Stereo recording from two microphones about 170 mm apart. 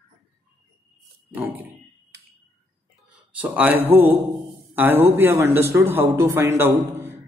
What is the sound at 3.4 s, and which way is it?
A man's voice, 10° right (ahead or behind).